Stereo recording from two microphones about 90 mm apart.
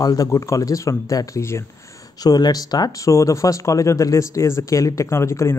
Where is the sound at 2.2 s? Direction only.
45° left (ahead or behind).